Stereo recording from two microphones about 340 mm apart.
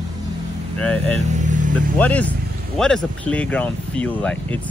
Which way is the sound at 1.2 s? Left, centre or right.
Right.